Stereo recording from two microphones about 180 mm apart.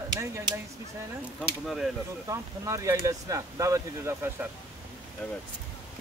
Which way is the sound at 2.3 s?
15° right (ahead or behind).